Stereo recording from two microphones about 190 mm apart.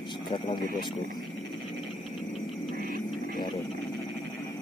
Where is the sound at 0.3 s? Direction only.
25° left (ahead or behind).